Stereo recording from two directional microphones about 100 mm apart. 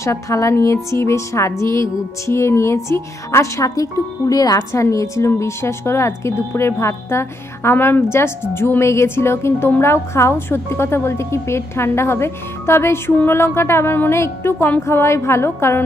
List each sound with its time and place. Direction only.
0.0 s music: 30° left (ahead or behind)